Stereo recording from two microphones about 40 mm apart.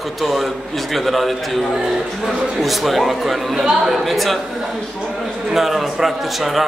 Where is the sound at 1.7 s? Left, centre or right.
Centre.